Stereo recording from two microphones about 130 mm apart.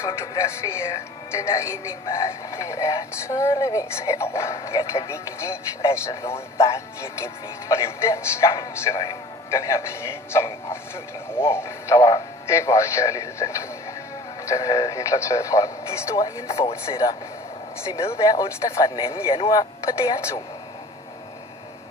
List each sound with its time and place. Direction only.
0.0 s speech: 20° left (ahead or behind)
16.4 s speech: 50° left (ahead or behind)
16.8 s speech: 25° left (ahead or behind)
18.2 s speech: 30° left (ahead or behind)
19.9 s speech: 25° left (ahead or behind)